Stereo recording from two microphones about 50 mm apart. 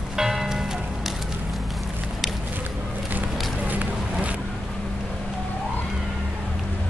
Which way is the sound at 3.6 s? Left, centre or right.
Right.